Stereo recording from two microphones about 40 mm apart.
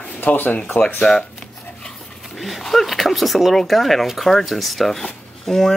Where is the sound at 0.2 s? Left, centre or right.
Left.